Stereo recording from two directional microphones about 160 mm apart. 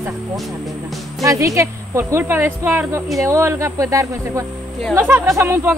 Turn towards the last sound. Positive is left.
turn(degrees=-15)  # may be behind; listen again after turning